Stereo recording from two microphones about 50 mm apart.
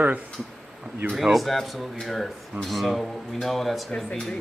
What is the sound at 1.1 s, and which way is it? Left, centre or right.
Speech, centre.